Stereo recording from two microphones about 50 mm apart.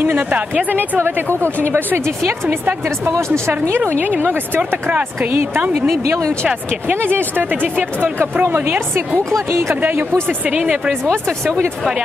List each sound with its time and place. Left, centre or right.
0.0 s speech: right
0.7 s speech: right
3.1 s speech: right
3.7 s speech: right
6.0 s speech: right
7.1 s speech: right
9.5 s speech: right
10.5 s speech: right